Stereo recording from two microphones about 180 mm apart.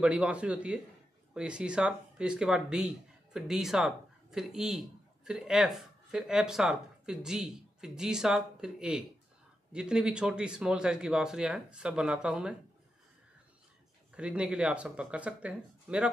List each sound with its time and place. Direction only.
0.0 s a man's voice: 5° right (ahead or behind)
14.1 s speech: 5° right (ahead or behind)